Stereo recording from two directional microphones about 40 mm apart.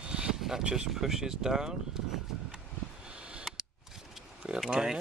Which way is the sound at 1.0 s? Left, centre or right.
Centre.